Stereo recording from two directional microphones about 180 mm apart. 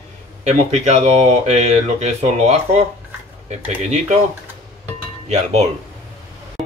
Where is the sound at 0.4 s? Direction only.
40° right (ahead or behind).